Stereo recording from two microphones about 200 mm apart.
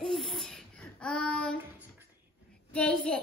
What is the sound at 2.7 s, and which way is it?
Speech, 5° left (ahead or behind).